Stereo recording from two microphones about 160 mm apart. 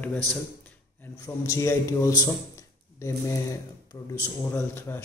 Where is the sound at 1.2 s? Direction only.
20° left (ahead or behind).